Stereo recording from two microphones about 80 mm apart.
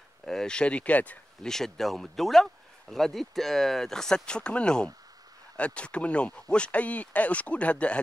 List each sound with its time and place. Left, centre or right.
0.2 s speech: centre
1.4 s speech: centre